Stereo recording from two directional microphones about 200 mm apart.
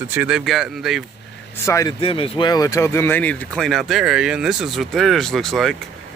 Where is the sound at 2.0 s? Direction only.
25° left (ahead or behind); by 5.7 s centre (ahead or behind).